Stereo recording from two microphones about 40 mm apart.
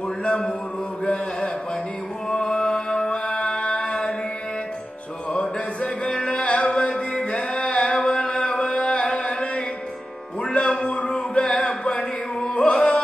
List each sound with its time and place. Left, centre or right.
0.2 s speech: left
2.2 s music: left
5.3 s music: left
10.9 s a sound: left